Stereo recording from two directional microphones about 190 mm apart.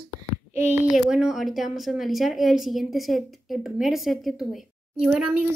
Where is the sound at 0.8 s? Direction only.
Centre (ahead or behind).